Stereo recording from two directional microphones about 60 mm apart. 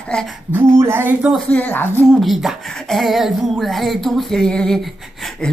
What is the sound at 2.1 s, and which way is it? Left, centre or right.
A woman's voice, centre.